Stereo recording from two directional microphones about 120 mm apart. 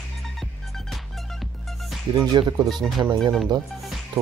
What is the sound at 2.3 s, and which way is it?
Speech, 35° right (ahead or behind).